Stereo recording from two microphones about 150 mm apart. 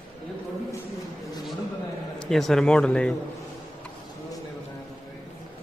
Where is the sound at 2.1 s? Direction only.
Centre (ahead or behind).